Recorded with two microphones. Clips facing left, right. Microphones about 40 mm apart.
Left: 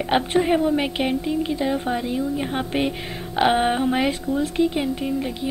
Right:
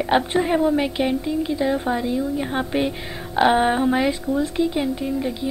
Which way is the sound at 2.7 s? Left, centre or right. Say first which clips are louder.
Right 1 dB; centre.